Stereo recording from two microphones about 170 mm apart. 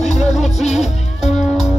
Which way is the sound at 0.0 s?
45° left (ahead or behind).